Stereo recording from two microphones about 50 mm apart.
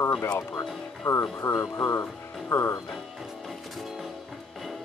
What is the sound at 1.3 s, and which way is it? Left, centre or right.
Speech, left.